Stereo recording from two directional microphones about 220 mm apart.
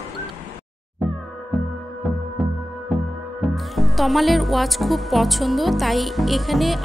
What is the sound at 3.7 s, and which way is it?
Speech, centre (ahead or behind).